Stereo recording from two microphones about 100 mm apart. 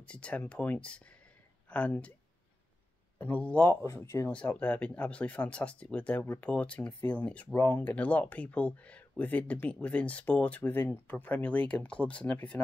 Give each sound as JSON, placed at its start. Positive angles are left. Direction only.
{"t": 0.0, "sound": "speech", "side_deg": 10}
{"t": 3.2, "sound": "speech", "side_deg": 15}
{"t": 3.8, "sound": "speech", "side_deg": 30}
{"t": 4.3, "sound": "speech", "side_deg": 10}